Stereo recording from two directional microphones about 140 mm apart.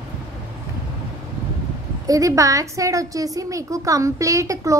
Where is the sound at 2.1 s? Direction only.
25° right (ahead or behind).